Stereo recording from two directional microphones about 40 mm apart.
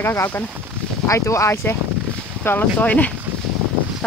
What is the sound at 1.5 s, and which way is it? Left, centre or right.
Speech, left.